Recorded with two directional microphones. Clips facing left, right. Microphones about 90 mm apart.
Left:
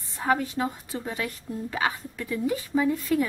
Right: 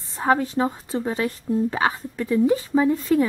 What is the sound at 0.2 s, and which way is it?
A woman's voice, 30° right (ahead or behind).